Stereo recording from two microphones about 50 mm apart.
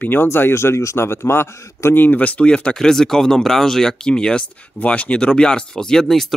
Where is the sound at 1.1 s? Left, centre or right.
Left.